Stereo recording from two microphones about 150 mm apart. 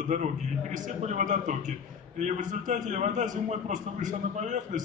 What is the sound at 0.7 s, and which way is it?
A man's voice, 55° right (ahead or behind).